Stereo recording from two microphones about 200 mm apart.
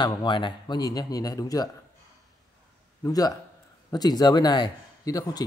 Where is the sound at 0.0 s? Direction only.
25° left (ahead or behind).